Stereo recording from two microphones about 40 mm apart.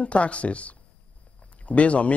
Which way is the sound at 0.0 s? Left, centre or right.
Left.